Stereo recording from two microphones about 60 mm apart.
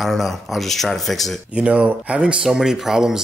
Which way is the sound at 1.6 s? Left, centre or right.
Centre.